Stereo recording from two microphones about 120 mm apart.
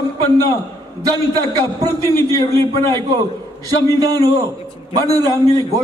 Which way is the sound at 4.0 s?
30° right (ahead or behind).